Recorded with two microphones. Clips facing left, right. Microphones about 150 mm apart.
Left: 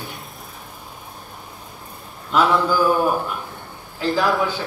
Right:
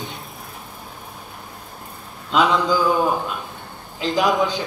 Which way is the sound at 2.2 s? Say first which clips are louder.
Even; 15° right (ahead or behind).